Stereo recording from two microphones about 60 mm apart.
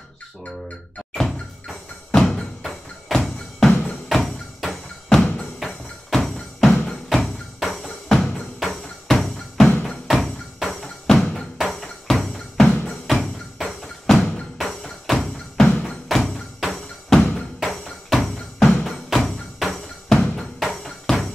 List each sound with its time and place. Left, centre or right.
2.1 s music: centre
5.2 s music: centre
5.6 s music: centre